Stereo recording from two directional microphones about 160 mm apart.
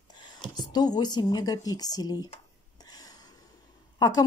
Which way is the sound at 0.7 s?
25° left (ahead or behind).